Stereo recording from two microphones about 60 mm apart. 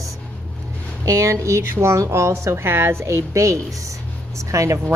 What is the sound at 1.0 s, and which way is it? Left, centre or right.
Speech, right.